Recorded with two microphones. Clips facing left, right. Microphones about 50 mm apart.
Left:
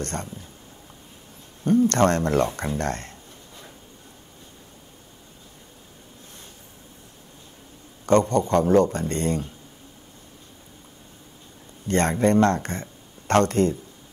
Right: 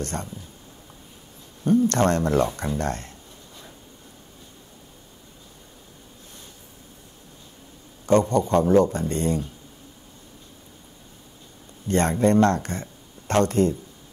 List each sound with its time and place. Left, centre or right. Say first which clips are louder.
0.0 s speech: even; left
1.7 s speech: left 1 dB; left
8.3 s speech: even; left
11.9 s speech: even; left